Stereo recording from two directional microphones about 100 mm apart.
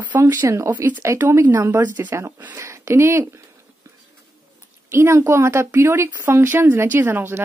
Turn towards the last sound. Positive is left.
turn(degrees=-25)  # may be behind; listen again after turning